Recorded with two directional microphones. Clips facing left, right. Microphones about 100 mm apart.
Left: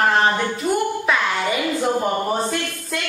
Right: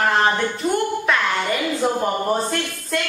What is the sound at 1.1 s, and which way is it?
Music, 5° left (ahead or behind).